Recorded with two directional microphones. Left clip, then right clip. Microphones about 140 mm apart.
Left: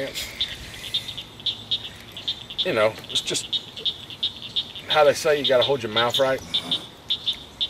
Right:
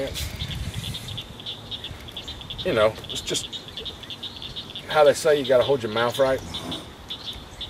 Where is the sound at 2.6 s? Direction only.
Centre (ahead or behind).